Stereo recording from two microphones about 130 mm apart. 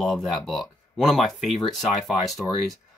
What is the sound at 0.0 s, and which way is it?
Speech, centre (ahead or behind).